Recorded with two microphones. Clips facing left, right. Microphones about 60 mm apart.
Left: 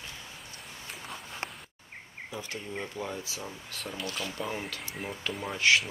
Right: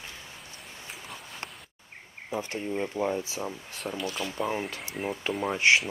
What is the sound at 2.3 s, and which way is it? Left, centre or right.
Speech, right.